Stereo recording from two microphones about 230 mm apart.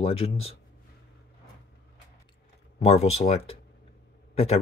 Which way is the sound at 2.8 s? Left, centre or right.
Left.